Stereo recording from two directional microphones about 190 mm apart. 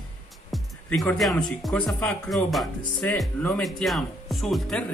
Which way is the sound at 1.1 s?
Centre (ahead or behind).